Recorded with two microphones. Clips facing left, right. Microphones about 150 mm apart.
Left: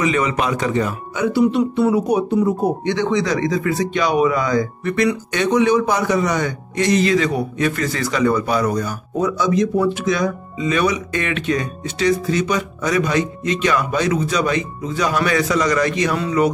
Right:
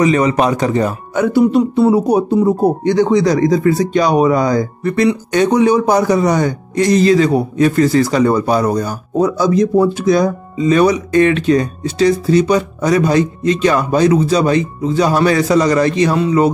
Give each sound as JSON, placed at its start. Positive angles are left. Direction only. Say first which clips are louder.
{"t": 0.0, "sound": "speech", "louder": "right 6 dB", "side_deg": -40}
{"t": 1.8, "sound": "speech", "louder": "right 5 dB", "side_deg": -35}